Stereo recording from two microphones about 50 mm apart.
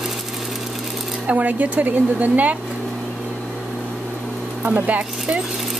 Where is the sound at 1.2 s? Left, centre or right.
Right.